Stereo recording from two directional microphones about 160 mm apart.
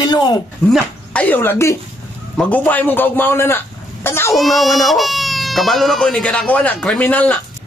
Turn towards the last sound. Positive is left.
turn(degrees=10)  # may be behind; listen again after turning